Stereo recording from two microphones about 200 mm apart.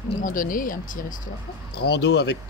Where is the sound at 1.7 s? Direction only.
55° left (ahead or behind).